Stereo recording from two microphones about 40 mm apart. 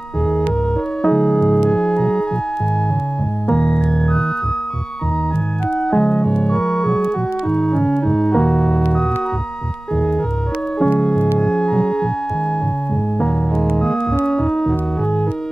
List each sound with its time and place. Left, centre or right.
1.0 s keyboard: centre
3.4 s music: left
5.9 s music: left
7.4 s organ: centre
9.9 s music: centre
11.3 s organ: centre
13.2 s keyboard: centre